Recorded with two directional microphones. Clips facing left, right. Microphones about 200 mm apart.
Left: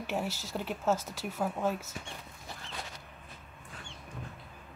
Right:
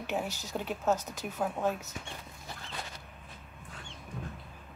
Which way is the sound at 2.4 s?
Centre (ahead or behind).